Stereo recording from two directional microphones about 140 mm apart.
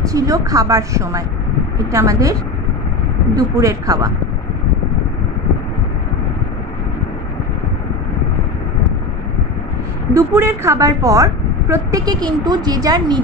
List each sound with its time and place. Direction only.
0.0 s a woman's voice: 25° right (ahead or behind)
3.3 s a woman's voice: 25° right (ahead or behind)
10.1 s a woman's voice: 15° right (ahead or behind)